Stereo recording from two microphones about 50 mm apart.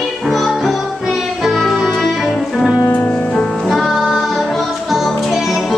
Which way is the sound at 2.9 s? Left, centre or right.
Left.